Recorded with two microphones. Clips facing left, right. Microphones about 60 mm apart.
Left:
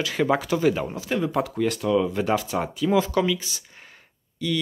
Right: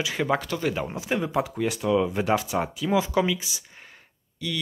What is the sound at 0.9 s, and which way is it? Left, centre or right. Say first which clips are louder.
Speech: left 1 dB; centre.